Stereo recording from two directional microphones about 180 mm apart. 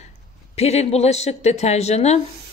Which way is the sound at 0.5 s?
35° left (ahead or behind).